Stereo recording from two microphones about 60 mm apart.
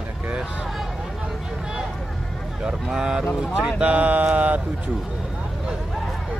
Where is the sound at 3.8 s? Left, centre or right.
Right.